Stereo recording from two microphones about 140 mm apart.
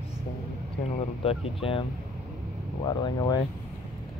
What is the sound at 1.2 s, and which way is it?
Speech, 45° left (ahead or behind).